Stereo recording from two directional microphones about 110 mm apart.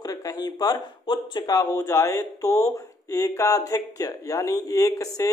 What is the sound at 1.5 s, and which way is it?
Speech, 30° left (ahead or behind).